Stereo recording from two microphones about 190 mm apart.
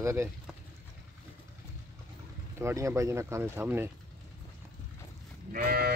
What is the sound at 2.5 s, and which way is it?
A man's voice, 15° right (ahead or behind).